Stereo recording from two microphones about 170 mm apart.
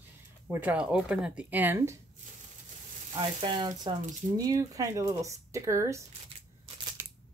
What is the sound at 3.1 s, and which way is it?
Speech, 30° right (ahead or behind).